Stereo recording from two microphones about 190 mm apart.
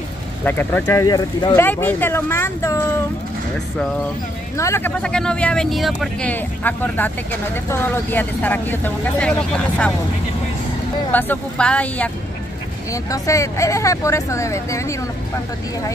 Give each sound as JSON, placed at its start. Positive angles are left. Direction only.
{"t": 0.5, "sound": "speech", "side_deg": 10}
{"t": 4.6, "sound": "speech", "side_deg": 15}
{"t": 11.1, "sound": "speech", "side_deg": 10}
{"t": 12.9, "sound": "speech", "side_deg": 15}